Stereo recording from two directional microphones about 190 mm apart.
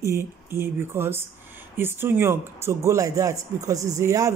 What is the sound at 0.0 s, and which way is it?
Speech, 15° right (ahead or behind).